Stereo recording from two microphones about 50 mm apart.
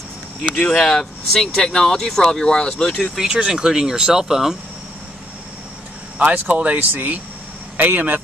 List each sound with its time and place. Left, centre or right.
0.6 s speech: centre
3.3 s speech: centre
6.1 s speech: right